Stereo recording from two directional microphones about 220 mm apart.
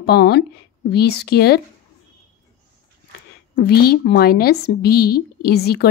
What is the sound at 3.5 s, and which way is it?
A woman's voice, 45° left (ahead or behind).